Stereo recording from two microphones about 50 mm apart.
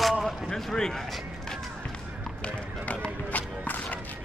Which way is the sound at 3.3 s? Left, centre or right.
Left.